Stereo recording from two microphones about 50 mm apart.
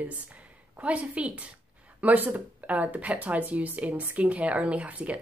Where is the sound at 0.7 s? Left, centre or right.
Right.